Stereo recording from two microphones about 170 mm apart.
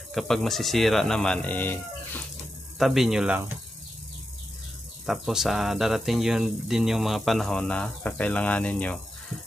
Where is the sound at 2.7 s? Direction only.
Centre (ahead or behind).